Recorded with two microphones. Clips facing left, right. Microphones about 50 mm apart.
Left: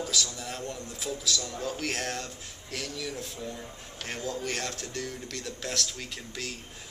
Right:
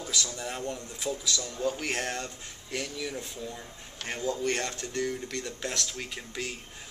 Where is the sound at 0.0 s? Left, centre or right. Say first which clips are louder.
Left 1 dB; centre.